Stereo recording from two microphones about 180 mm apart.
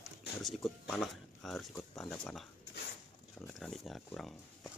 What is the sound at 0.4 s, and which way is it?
Speech, centre (ahead or behind).